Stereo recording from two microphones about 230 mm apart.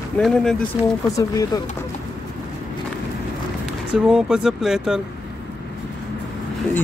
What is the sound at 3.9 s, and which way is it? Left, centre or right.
Speech, centre.